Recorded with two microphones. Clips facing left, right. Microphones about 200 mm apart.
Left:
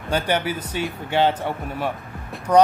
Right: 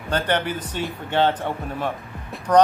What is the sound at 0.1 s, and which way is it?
A man's voice, 10° left (ahead or behind).